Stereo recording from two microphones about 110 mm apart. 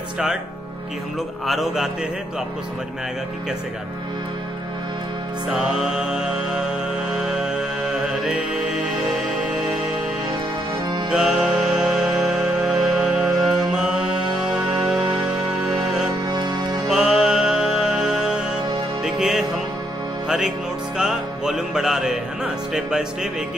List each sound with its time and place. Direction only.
1.4 s a man's voice: centre (ahead or behind)
5.8 s music: 5° right (ahead or behind)
11.1 s music: 5° right (ahead or behind)
16.1 s music: 40° right (ahead or behind)
16.8 s music: 5° right (ahead or behind)